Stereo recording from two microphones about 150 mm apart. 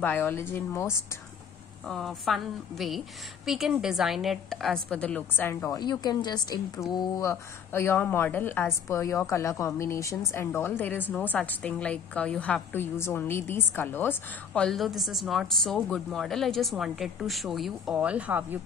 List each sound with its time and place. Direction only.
0.0 s a woman's voice: 15° left (ahead or behind)
1.9 s a woman's voice: centre (ahead or behind); by 5.8 s 15° left (ahead or behind)
5.8 s a woman's voice: 25° left (ahead or behind); by 18.6 s 10° right (ahead or behind)